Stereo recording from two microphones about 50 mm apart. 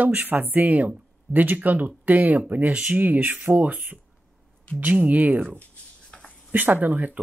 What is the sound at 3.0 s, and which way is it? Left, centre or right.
Speech, right.